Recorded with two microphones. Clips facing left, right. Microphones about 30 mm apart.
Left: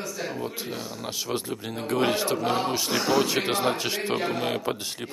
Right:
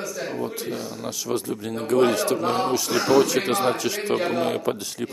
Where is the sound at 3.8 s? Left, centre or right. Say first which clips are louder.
Right 3 dB; left.